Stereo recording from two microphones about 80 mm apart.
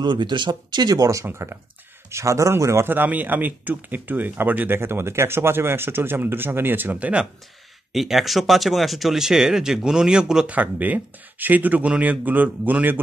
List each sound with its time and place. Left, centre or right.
0.0 s speech: right
1.2 s speech: right
2.9 s speech: right
7.9 s speech: centre; by 13.0 s right